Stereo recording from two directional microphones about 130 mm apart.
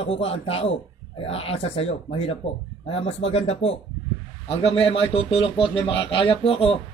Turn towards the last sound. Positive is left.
turn(degrees=45)  # may be behind; listen again after turning